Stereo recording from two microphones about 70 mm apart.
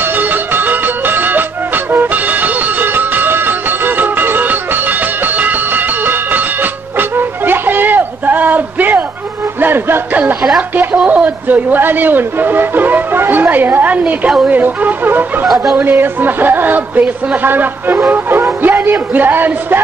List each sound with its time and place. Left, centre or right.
0.2 s music: right
11.0 s speech: centre
15.4 s speech: centre
15.7 s speech: right